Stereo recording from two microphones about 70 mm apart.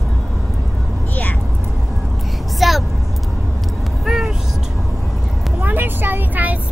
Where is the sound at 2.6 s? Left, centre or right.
Centre.